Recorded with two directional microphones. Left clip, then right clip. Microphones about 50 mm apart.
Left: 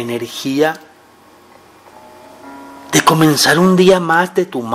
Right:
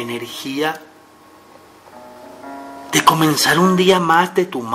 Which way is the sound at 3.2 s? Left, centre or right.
Centre.